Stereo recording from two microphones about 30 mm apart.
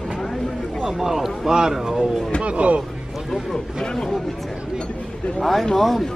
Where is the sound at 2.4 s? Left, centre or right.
Right.